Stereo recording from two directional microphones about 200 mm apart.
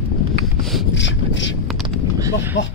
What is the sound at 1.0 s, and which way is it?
Vehicle, 65° left (ahead or behind).